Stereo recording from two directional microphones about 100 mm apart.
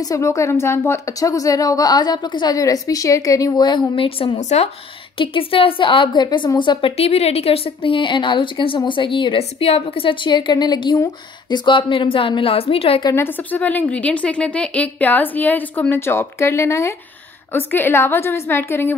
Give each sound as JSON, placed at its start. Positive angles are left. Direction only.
{"t": 0.1, "sound": "a woman's voice", "side_deg": 30}
{"t": 3.6, "sound": "a woman's voice", "side_deg": 55}
{"t": 7.0, "sound": "a woman's voice", "side_deg": 90}
{"t": 13.1, "sound": "a woman's voice", "side_deg": 25}